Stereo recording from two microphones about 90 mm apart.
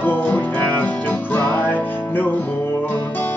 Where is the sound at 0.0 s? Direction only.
20° left (ahead or behind).